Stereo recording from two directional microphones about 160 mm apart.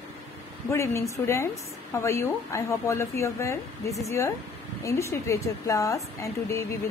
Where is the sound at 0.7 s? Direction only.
20° left (ahead or behind).